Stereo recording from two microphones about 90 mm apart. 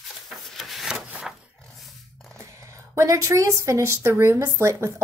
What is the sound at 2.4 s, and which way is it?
Speech, 35° right (ahead or behind).